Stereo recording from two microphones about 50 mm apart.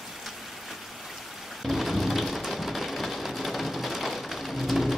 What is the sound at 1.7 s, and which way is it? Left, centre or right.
Rain, centre.